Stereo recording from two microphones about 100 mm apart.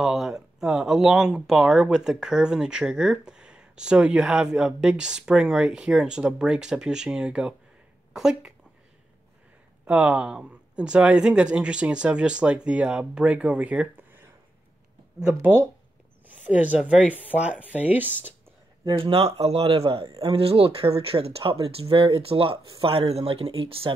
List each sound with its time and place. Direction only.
0.0 s speech: 5° right (ahead or behind)
9.8 s speech: 15° right (ahead or behind)
15.4 s speech: 25° right (ahead or behind)
18.9 s speech: 65° right (ahead or behind)
22.8 s speech: 75° right (ahead or behind)